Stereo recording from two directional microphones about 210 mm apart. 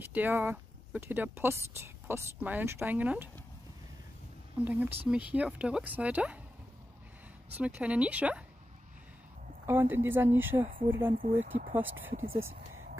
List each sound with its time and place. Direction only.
0.0 s speech: 10° right (ahead or behind)
4.6 s speech: 10° right (ahead or behind)
7.5 s speech: 5° right (ahead or behind)
9.7 s speech: 10° right (ahead or behind)
11.2 s speech: 35° right (ahead or behind)